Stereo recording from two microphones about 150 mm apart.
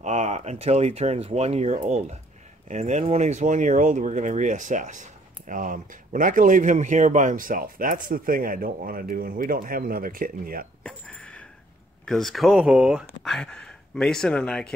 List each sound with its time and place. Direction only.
0.0 s speech: 50° right (ahead or behind); by 10.7 s 70° right (ahead or behind)
10.8 s a sound: 5° left (ahead or behind)
12.1 s speech: centre (ahead or behind)